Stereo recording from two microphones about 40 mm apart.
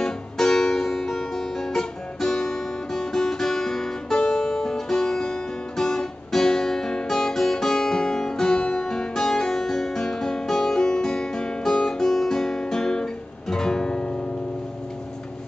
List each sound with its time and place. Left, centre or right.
0.0 s music: centre
8.8 s guitar: centre